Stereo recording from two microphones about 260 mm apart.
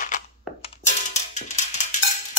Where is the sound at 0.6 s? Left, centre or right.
Left.